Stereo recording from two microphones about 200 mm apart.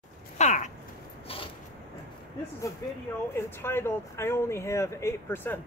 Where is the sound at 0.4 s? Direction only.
35° left (ahead or behind).